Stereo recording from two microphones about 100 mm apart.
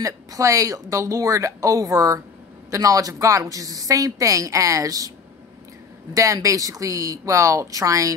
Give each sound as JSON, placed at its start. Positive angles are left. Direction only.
{"t": 0.0, "sound": "a woman's voice", "side_deg": -35}
{"t": 6.1, "sound": "a woman's voice", "side_deg": -35}